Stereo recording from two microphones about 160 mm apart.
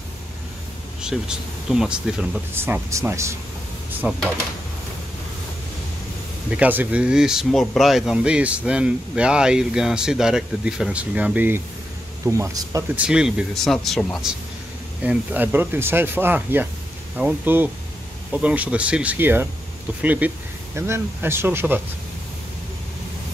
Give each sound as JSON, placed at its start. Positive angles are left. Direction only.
{"t": 1.0, "sound": "speech", "side_deg": -5}
{"t": 6.5, "sound": "speech", "side_deg": -10}
{"t": 12.9, "sound": "speech", "side_deg": -5}
{"t": 15.0, "sound": "speech", "side_deg": -10}